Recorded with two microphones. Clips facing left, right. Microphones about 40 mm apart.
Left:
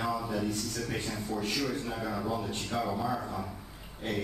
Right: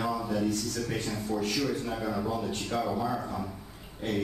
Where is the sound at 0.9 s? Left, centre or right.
Centre.